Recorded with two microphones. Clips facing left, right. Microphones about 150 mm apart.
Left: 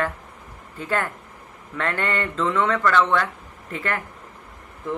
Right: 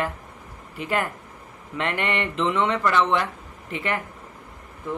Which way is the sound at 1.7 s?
20° right (ahead or behind).